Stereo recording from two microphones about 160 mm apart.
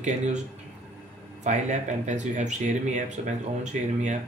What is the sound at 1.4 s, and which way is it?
Speech, 45° right (ahead or behind).